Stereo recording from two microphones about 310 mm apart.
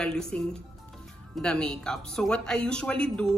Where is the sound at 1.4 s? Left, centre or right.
Centre.